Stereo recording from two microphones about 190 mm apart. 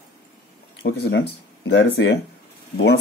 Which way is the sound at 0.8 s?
60° left (ahead or behind).